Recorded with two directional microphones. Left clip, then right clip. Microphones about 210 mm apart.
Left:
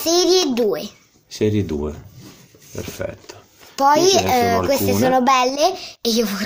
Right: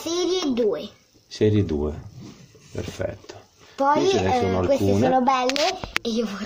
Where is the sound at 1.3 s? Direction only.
5° left (ahead or behind).